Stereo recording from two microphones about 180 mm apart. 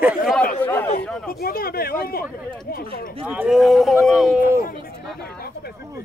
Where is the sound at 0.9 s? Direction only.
55° left (ahead or behind).